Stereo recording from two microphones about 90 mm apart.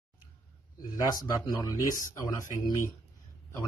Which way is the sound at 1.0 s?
45° left (ahead or behind).